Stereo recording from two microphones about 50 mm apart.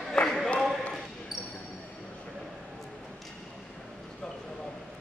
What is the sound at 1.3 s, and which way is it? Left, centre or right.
Basketball bounce, centre.